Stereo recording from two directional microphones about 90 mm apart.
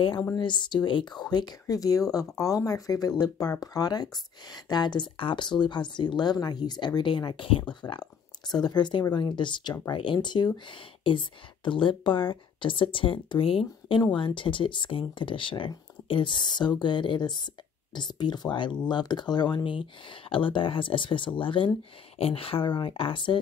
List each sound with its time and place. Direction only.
0.4 s speech: 60° left (ahead or behind)
7.8 s speech: 50° left (ahead or behind); by 14.0 s 80° left
14.1 s speech: 65° left (ahead or behind)
22.2 s speech: 90° left; by 23.4 s 65° left (ahead or behind)